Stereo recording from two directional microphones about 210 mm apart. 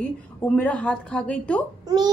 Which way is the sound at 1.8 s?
20° right (ahead or behind).